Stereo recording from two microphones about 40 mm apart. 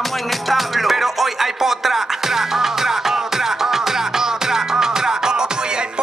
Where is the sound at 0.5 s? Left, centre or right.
Centre.